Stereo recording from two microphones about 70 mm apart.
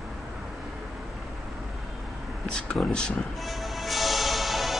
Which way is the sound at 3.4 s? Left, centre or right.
Centre.